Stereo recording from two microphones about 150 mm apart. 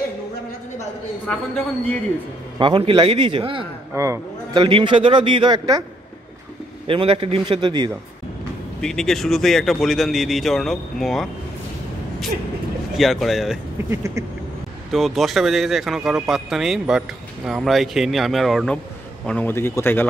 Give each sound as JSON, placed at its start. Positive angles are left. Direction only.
{"t": 2.6, "sound": "a man's voice", "side_deg": -30}
{"t": 3.9, "sound": "a man's voice", "side_deg": -20}
{"t": 4.6, "sound": "a man's voice", "side_deg": -35}
{"t": 6.9, "sound": "a man's voice", "side_deg": -35}
{"t": 8.8, "sound": "speech", "side_deg": 0}
{"t": 12.9, "sound": "speech", "side_deg": 0}
{"t": 13.8, "sound": "a sound", "side_deg": -20}
{"t": 14.9, "sound": "speech", "side_deg": 0}